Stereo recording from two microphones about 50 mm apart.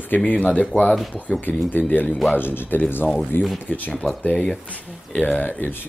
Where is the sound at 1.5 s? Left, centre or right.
Left.